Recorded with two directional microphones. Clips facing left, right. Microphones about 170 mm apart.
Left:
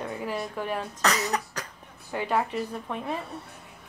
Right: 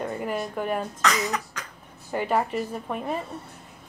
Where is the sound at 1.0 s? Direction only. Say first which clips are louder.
Left 2 dB; 35° left (ahead or behind).